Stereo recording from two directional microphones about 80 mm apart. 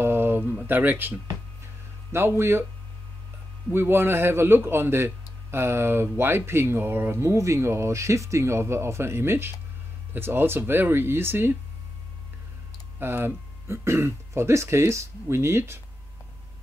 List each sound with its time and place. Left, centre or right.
0.0 s a sound: right
0.7 s a man's voice: right
3.7 s a man's voice: right
13.0 s a man's voice: right